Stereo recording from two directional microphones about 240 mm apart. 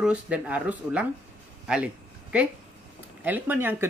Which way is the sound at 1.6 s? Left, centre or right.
Centre.